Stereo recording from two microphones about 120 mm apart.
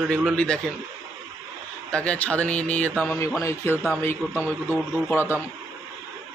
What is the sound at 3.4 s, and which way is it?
Speech, 25° left (ahead or behind).